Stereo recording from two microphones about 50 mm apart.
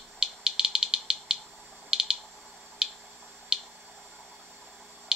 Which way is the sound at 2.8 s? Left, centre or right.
Centre.